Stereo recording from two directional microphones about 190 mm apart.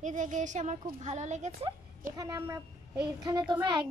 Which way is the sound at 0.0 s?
40° right (ahead or behind).